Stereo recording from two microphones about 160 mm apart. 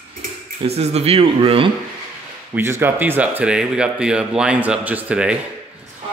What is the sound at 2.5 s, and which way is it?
Speech, 15° right (ahead or behind).